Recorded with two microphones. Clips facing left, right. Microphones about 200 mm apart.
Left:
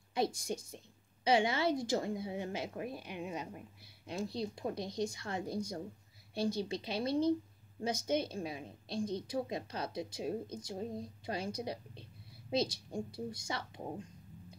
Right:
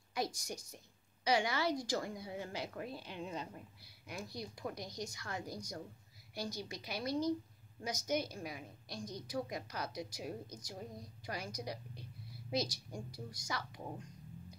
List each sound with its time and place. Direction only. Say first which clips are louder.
0.1 s a woman's voice: left 5 dB; 25° left (ahead or behind)